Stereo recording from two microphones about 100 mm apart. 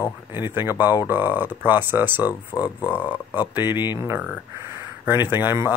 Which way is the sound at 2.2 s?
40° left (ahead or behind).